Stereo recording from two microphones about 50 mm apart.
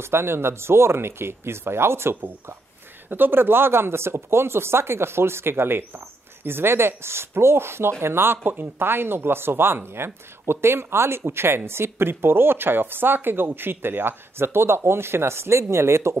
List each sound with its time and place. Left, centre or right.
0.0 s speech: right
3.1 s speech: right